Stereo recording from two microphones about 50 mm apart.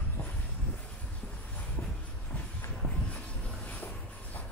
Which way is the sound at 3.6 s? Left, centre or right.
Left.